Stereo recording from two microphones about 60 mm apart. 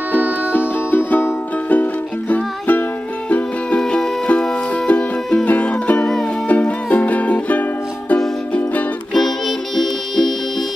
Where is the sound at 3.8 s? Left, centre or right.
Centre.